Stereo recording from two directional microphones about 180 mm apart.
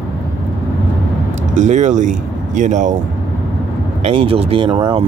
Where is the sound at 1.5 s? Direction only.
40° right (ahead or behind).